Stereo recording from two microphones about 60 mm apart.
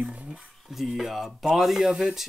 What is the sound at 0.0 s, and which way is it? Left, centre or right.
Music, right.